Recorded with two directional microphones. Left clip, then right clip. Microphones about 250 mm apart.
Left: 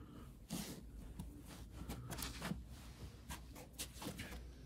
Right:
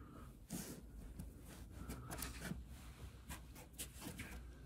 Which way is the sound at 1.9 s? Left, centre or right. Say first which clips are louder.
Left 2 dB; centre.